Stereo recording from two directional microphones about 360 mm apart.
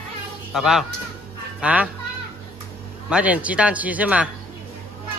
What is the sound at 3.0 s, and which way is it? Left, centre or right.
Speech, centre.